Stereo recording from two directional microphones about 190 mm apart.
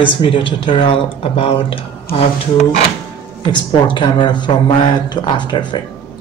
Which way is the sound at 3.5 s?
25° left (ahead or behind).